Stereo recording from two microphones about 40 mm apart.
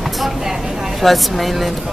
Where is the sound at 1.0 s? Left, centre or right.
Centre.